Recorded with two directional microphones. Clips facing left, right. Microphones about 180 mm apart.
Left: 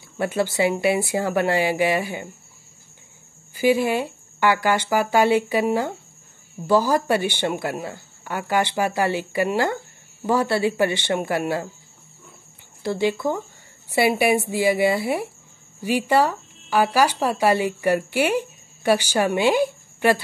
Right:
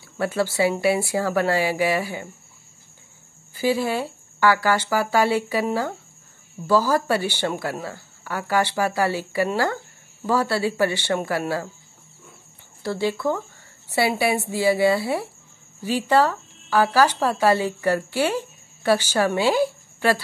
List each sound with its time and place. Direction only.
0.2 s speech: 20° left (ahead or behind)
3.5 s speech: 15° left (ahead or behind)
12.8 s speech: 20° left (ahead or behind)